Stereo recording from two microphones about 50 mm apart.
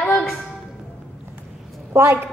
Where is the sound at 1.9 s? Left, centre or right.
Right.